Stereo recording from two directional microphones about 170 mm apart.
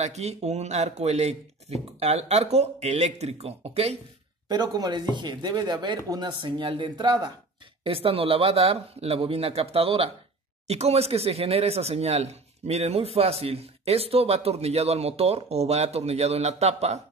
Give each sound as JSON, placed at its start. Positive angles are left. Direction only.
{"t": 0.0, "sound": "speech", "side_deg": -40}
{"t": 4.5, "sound": "speech", "side_deg": -25}